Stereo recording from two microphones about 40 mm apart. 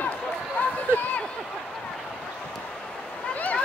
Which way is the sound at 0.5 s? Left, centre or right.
Left.